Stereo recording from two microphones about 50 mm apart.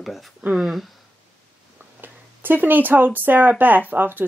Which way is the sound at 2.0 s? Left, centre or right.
Right.